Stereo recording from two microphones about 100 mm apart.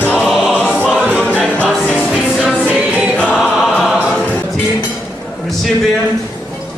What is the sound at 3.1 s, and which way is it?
Choir, 10° left (ahead or behind).